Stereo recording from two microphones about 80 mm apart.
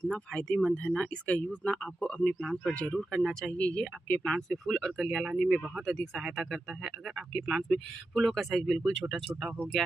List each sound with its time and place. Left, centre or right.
0.1 s speech: centre